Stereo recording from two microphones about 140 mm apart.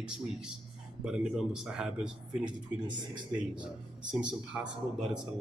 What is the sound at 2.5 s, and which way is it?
Speech, 30° right (ahead or behind).